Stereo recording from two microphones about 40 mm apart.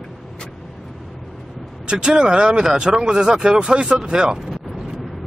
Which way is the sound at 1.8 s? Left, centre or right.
Right.